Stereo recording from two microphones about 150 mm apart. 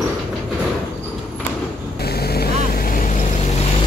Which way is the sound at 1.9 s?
90° left.